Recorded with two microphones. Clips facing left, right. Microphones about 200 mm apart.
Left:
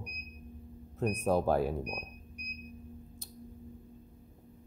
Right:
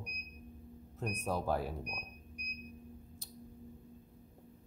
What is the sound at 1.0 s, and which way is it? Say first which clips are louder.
Speech: left 8 dB; 55° left (ahead or behind).